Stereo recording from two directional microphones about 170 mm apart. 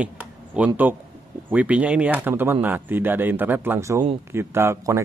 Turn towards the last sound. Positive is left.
turn(degrees=-15)  # may be behind; listen again after turning